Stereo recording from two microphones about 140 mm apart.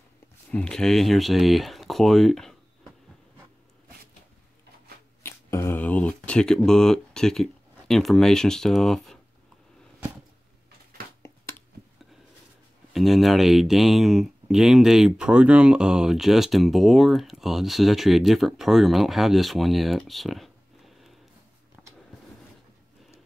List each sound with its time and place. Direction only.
0.5 s speech: 5° left (ahead or behind)
5.2 s a sound: 20° left (ahead or behind)
7.9 s speech: centre (ahead or behind)
12.9 s speech: centre (ahead or behind)